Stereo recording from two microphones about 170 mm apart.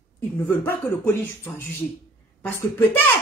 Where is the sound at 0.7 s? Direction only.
10° left (ahead or behind).